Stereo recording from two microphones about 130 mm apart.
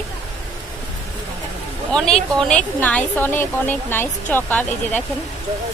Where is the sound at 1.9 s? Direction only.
5° left (ahead or behind).